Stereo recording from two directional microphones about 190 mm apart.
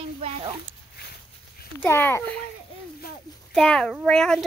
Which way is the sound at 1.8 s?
10° left (ahead or behind).